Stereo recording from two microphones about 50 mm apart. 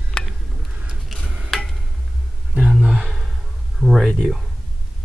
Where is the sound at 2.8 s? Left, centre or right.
Centre.